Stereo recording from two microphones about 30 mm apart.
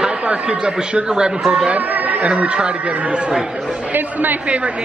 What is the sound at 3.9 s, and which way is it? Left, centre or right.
Speech, right.